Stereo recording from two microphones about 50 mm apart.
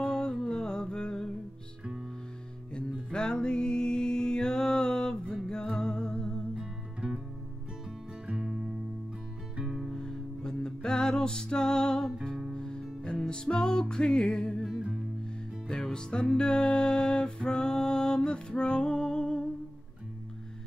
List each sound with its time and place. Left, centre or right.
0.0 s music: centre
3.1 s music: centre
6.5 s music: centre
8.3 s music: centre
9.9 s music: centre
15.7 s music: centre